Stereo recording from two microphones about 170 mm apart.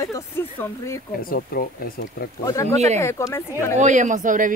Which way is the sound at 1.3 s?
60° left (ahead or behind).